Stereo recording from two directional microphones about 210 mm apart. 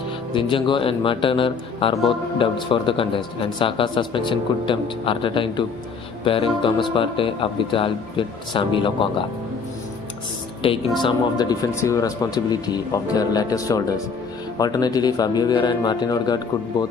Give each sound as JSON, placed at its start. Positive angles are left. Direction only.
{"t": 0.3, "sound": "speech", "side_deg": 25}
{"t": 10.6, "sound": "speech", "side_deg": 25}